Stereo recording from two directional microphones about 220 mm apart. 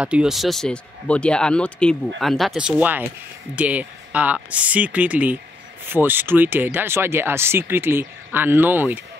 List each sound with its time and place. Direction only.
0.0 s speech: 5° right (ahead or behind)